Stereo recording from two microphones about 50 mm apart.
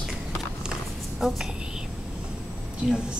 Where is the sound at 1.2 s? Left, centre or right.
Centre.